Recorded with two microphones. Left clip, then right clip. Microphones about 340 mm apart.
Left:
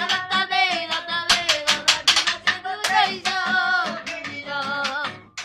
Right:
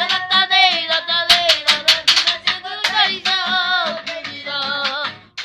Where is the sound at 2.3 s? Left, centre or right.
Centre.